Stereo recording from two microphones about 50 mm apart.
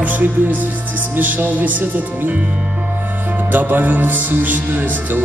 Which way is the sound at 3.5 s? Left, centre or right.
Right.